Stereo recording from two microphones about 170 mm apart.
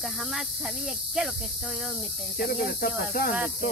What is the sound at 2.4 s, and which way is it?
Speech, 60° left (ahead or behind).